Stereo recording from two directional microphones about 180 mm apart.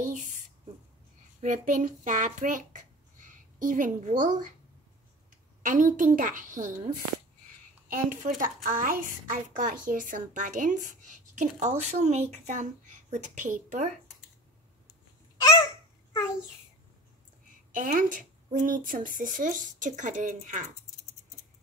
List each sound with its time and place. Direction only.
0.0 s a sound: 45° right (ahead or behind)
1.4 s a child's voice: 45° right (ahead or behind)
5.6 s a woman's voice: 50° right (ahead or behind)
15.4 s babbling: 20° left (ahead or behind)
17.7 s a woman's voice: 45° right (ahead or behind)